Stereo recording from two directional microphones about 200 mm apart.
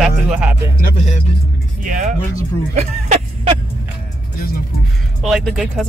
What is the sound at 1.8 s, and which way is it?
Speech, 40° right (ahead or behind).